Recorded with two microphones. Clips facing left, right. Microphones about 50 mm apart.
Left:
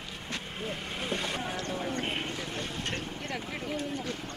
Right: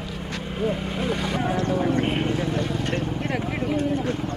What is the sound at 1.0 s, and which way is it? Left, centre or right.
Vehicle, right.